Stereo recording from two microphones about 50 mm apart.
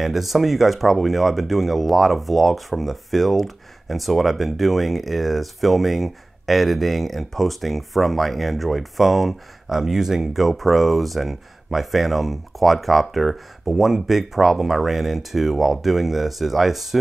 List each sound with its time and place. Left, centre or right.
0.0 s speech: centre